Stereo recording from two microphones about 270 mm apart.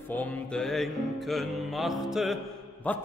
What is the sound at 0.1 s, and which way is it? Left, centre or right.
Music, centre.